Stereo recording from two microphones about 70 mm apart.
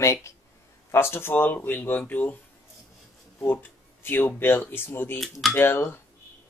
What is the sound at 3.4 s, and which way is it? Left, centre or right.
Speech, left.